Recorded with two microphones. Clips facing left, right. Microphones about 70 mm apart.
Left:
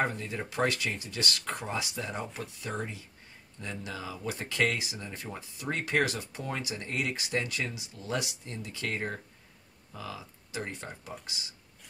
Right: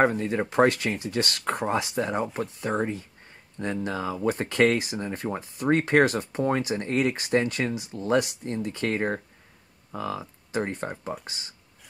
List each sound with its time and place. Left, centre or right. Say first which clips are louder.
0.0 s speech: right 9 dB; right